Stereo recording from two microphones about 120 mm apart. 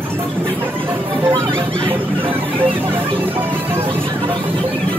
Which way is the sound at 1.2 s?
40° right (ahead or behind).